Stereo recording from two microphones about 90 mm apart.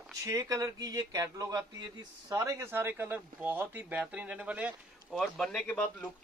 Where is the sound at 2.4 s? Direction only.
30° right (ahead or behind); by 4.7 s 15° right (ahead or behind).